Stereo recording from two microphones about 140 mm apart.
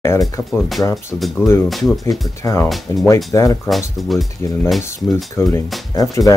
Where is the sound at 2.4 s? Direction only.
20° left (ahead or behind).